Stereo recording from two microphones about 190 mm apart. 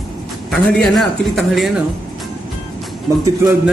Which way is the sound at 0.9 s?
Centre (ahead or behind).